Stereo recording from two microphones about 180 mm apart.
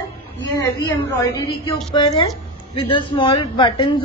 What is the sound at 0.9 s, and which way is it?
Speech, 10° left (ahead or behind).